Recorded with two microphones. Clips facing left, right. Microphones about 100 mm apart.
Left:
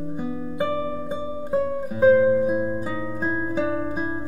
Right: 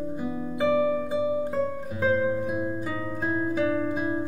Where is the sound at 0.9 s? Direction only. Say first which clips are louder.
Right 4 dB; 20° left (ahead or behind).